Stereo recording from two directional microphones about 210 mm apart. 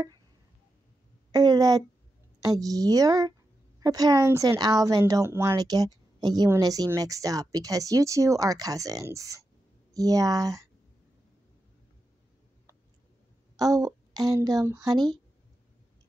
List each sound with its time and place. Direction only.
1.3 s speech: 20° right (ahead or behind)
13.6 s speech: 15° right (ahead or behind)